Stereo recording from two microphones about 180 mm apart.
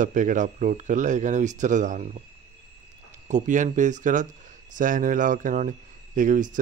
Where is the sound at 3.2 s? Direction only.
45° right (ahead or behind).